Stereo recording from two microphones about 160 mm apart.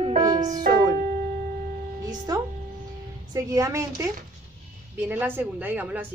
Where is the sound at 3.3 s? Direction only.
20° right (ahead or behind).